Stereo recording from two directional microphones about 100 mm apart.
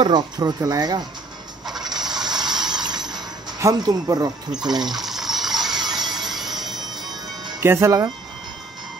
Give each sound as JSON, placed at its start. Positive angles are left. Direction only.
{"t": 0.4, "sound": "speech", "side_deg": -35}
{"t": 1.9, "sound": "a sound", "side_deg": -45}
{"t": 3.6, "sound": "speech", "side_deg": -35}
{"t": 4.8, "sound": "water", "side_deg": -5}
{"t": 5.8, "sound": "music", "side_deg": -45}
{"t": 6.3, "sound": "music", "side_deg": -5}
{"t": 7.6, "sound": "speech", "side_deg": -25}